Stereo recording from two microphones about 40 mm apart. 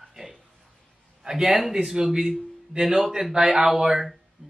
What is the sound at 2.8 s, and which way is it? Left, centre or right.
Speech, centre.